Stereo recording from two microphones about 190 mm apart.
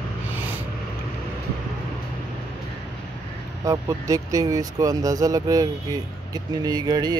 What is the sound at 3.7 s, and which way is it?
Speech, 15° right (ahead or behind).